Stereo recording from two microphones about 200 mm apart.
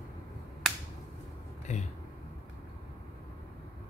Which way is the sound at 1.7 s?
35° left (ahead or behind).